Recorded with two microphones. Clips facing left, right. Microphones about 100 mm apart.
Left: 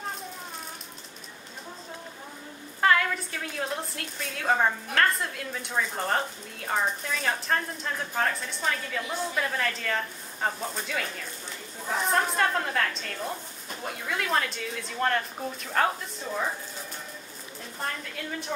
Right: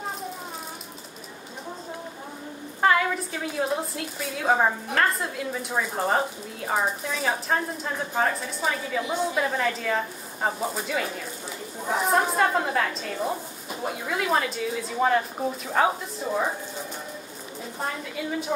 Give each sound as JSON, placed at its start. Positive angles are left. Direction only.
{"t": 2.8, "sound": "a woman's voice", "side_deg": -5}
{"t": 17.7, "sound": "a woman's voice", "side_deg": -10}